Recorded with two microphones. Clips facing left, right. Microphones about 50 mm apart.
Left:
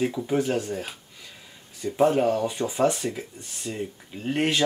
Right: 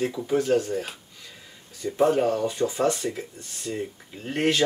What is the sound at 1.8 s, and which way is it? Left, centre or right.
Speech, centre.